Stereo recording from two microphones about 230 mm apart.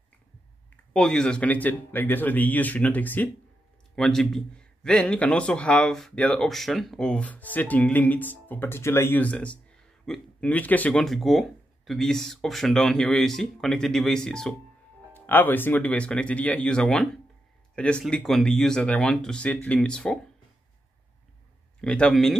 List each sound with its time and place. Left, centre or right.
0.9 s a man's voice: centre
21.8 s a man's voice: centre